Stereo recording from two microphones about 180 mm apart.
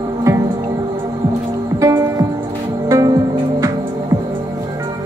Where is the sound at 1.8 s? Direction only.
15° right (ahead or behind).